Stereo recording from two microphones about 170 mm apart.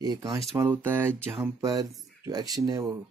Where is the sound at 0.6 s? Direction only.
10° right (ahead or behind).